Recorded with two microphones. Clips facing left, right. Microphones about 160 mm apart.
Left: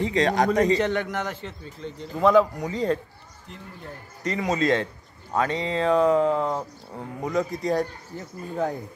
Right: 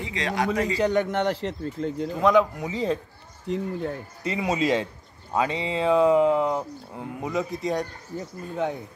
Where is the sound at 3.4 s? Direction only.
90° right.